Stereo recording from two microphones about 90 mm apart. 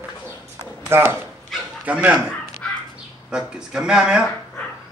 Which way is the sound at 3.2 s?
10° right (ahead or behind).